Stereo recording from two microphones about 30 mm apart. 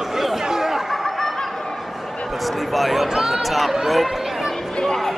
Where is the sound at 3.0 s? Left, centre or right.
Centre.